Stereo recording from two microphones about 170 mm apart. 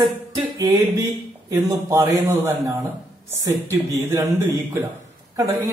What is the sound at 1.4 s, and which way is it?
Speech, 20° right (ahead or behind).